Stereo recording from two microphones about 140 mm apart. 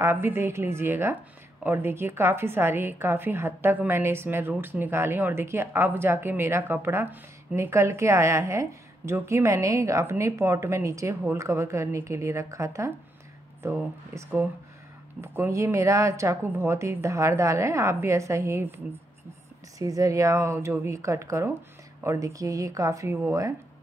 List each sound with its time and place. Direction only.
0.0 s a woman's voice: 15° right (ahead or behind)
15.2 s a woman's voice: 20° right (ahead or behind)
19.8 s a woman's voice: 25° right (ahead or behind)